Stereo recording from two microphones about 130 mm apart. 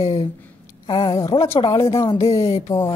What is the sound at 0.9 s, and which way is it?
Speech, 35° left (ahead or behind).